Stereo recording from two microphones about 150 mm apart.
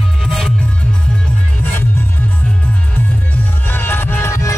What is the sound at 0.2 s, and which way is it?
Music, centre (ahead or behind).